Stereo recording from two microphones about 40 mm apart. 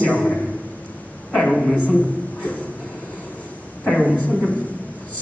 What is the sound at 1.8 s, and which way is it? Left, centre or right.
Speech, left.